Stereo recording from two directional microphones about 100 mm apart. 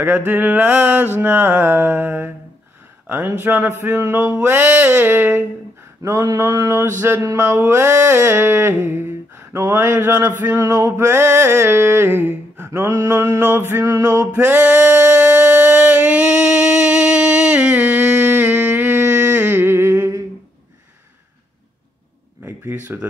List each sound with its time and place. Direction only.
0.0 s mantra: 20° right (ahead or behind)
6.0 s mantra: 35° right (ahead or behind)
14.0 s male singing: 35° right (ahead or behind)
14.3 s a sound: 20° right (ahead or behind)
22.7 s speech: 15° right (ahead or behind)